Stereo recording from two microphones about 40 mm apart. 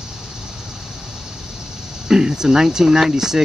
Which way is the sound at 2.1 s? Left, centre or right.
Centre.